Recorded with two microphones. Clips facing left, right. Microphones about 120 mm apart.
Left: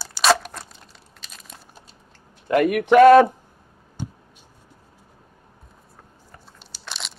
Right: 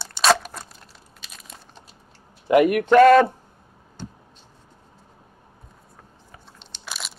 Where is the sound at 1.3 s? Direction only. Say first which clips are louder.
Even; centre (ahead or behind).